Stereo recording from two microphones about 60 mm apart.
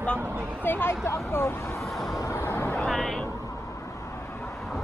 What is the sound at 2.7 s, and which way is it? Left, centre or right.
Vehicle, centre.